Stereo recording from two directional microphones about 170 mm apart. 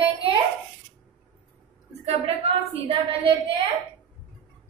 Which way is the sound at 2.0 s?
35° right (ahead or behind).